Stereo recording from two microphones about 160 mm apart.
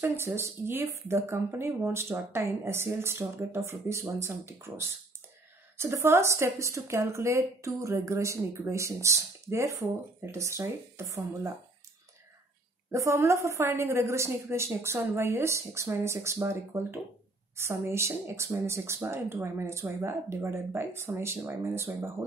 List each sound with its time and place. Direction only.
0.0 s speech: 15° right (ahead or behind)
12.9 s speech: 20° right (ahead or behind)